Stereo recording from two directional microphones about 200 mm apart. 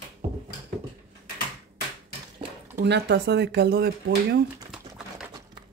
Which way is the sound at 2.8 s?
60° right (ahead or behind).